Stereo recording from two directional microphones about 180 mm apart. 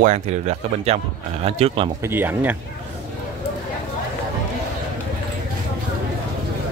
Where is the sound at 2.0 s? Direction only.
10° right (ahead or behind).